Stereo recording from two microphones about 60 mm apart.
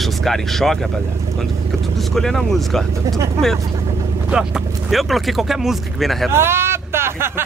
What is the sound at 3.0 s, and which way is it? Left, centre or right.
Speech, right.